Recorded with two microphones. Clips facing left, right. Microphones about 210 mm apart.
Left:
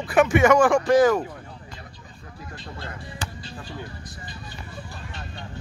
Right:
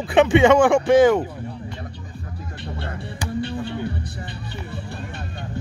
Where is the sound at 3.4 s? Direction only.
65° right (ahead or behind).